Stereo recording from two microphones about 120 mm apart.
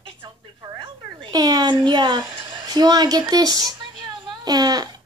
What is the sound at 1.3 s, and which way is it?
Speech, 35° right (ahead or behind).